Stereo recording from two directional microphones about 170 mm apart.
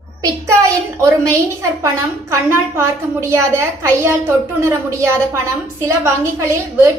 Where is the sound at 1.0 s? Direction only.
20° right (ahead or behind).